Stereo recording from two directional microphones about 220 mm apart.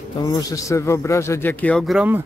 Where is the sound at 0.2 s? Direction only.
15° left (ahead or behind).